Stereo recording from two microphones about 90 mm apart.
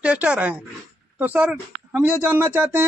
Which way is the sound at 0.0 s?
15° right (ahead or behind).